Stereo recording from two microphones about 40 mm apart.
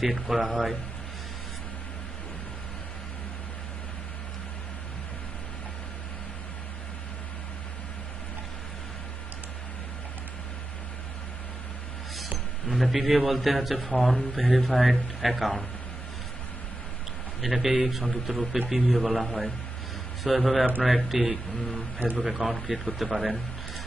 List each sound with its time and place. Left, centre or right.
0.0 s a man's voice: centre
12.7 s a man's voice: centre
17.4 s a man's voice: centre